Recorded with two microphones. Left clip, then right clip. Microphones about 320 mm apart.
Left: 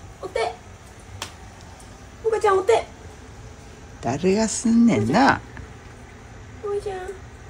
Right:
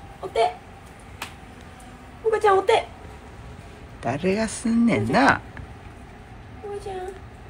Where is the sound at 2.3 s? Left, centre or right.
Centre.